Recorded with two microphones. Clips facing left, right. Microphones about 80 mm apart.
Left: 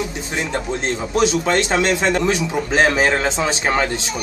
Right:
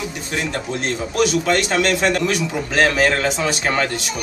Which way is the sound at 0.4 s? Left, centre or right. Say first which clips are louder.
Left 1 dB; left.